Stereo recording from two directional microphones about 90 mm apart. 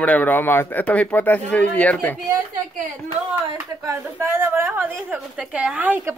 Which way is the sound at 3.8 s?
35° right (ahead or behind).